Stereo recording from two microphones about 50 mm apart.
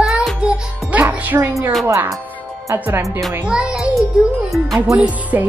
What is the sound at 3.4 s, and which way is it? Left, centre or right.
Laughter, centre.